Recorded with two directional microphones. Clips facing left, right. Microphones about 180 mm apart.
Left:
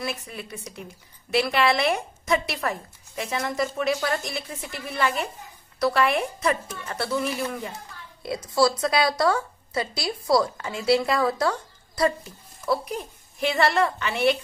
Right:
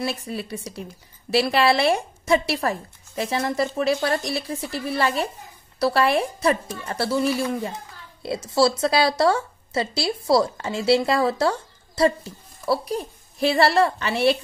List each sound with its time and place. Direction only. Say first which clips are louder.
0.3 s a woman's voice: right 7 dB; 35° right (ahead or behind)